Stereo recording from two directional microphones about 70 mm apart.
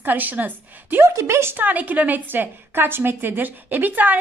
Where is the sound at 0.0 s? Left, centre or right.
Right.